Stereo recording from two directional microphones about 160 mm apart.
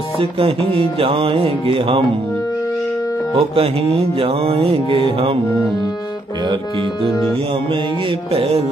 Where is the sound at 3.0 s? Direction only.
20° left (ahead or behind).